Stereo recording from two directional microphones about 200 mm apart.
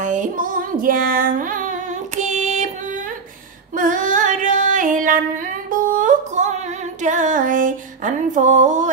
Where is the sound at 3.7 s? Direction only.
40° right (ahead or behind).